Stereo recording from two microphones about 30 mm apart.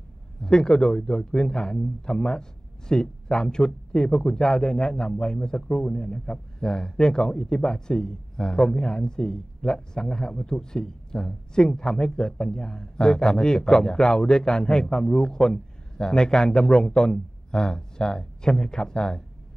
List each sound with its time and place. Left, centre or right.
0.4 s speech: left